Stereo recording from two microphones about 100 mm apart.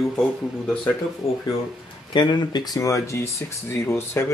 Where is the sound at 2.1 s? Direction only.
45° left (ahead or behind); by 4.3 s 25° left (ahead or behind).